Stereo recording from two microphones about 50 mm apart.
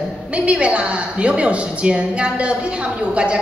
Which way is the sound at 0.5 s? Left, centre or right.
Right.